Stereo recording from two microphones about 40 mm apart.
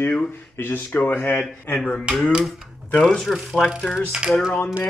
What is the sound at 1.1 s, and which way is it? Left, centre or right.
Speech, left.